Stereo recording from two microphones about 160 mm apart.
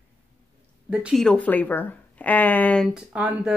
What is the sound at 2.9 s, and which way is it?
Speech, 5° right (ahead or behind).